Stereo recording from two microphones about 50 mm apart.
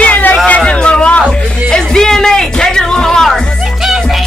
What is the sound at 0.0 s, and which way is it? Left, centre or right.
Music, left.